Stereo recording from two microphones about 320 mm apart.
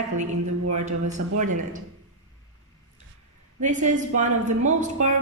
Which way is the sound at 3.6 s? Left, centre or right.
Right.